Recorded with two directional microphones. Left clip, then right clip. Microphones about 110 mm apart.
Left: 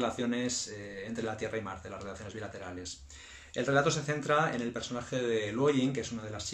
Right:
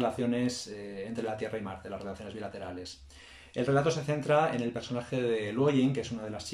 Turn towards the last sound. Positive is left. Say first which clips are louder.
# right 2 dB
turn(degrees=-20)  # may be behind; listen again after turning